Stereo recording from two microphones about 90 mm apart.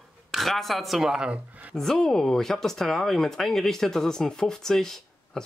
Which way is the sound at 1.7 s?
5° left (ahead or behind).